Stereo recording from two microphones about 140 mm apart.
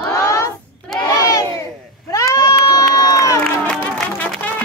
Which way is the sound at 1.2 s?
25° left (ahead or behind).